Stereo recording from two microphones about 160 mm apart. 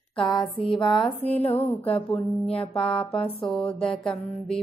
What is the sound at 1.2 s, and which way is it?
Mantra, 40° left (ahead or behind).